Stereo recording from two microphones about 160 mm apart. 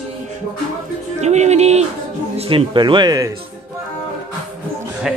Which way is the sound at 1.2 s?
45° right (ahead or behind).